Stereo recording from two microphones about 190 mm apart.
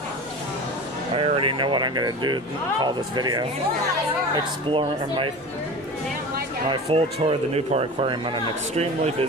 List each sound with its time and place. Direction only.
1.1 s speech: 30° right (ahead or behind)
4.6 s speech: 25° right (ahead or behind)
6.7 s speech: 30° right (ahead or behind)